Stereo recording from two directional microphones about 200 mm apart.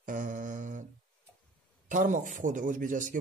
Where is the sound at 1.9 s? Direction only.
40° right (ahead or behind).